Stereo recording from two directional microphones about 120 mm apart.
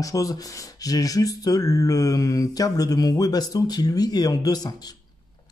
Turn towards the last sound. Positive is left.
turn(degrees=30)  # may be behind; listen again after turning